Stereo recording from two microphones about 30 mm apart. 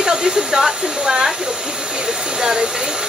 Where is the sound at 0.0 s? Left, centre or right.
Right.